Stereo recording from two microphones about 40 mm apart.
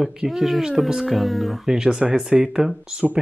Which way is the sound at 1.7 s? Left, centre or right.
Centre.